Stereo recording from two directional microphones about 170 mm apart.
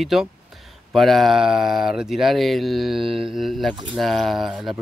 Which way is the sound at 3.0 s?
30° right (ahead or behind).